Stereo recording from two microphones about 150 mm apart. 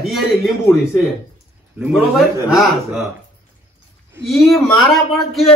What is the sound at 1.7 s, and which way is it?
A man's voice, 5° right (ahead or behind).